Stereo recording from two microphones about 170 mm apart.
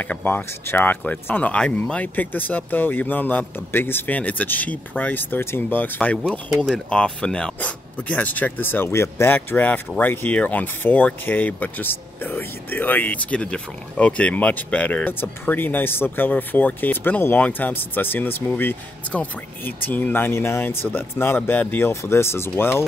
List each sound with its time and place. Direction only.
0.0 s speech: 10° left (ahead or behind)